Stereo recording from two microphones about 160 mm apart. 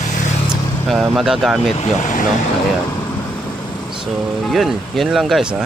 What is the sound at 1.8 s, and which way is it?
Speech, 50° left (ahead or behind).